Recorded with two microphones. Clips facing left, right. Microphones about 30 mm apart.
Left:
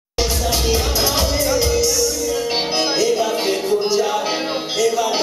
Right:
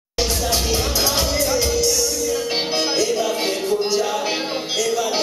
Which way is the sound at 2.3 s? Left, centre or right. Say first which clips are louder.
Left 2 dB; centre.